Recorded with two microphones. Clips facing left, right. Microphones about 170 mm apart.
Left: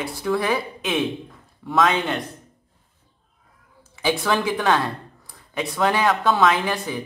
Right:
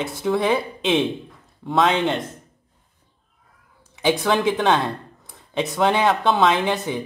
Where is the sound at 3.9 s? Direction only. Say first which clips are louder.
Right 2 dB; 20° right (ahead or behind).